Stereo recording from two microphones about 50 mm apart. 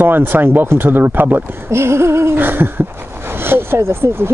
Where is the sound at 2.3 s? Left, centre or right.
Right.